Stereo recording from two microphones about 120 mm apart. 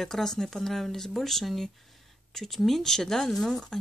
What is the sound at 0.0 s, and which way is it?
Speech, 5° left (ahead or behind).